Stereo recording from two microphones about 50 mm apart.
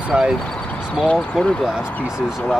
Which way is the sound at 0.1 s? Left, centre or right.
Right.